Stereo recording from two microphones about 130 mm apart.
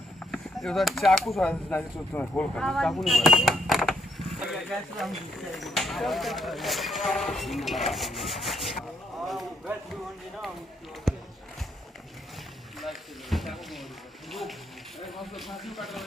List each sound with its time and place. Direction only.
0.3 s speech: 5° left (ahead or behind)
11.1 s a sound: centre (ahead or behind)
12.8 s speech: centre (ahead or behind)
15.0 s speech: centre (ahead or behind)